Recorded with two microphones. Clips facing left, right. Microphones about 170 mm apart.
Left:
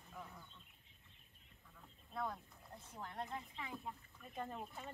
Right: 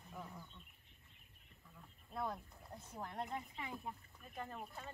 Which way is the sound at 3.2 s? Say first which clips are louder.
Right 1 dB; 15° right (ahead or behind).